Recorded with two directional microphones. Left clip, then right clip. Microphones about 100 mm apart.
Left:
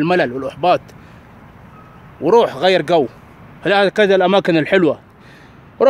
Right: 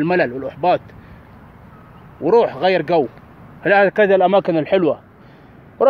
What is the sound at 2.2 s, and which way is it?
Speech, 40° left (ahead or behind).